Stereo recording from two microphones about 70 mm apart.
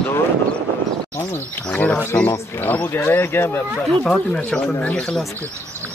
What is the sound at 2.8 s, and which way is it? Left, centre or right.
Speech, left.